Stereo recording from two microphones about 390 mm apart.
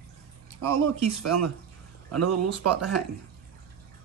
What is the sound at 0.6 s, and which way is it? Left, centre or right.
Speech, right.